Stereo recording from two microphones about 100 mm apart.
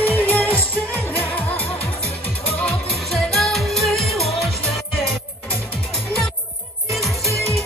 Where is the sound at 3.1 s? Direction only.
Centre (ahead or behind).